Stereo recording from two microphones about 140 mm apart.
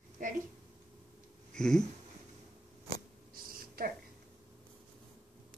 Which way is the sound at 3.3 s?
90° right.